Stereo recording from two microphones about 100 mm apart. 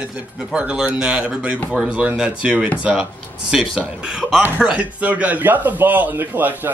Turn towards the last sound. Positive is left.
turn(degrees=-20)  # may be behind; listen again after turning